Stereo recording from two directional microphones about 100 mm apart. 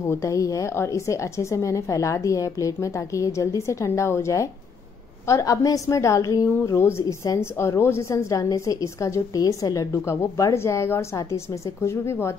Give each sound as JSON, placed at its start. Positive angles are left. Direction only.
{"t": 0.1, "sound": "a woman's voice", "side_deg": 30}